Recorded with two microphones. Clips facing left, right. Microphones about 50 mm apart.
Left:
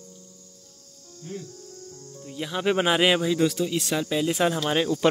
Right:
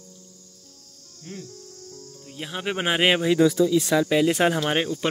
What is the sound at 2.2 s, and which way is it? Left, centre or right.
Speech, right.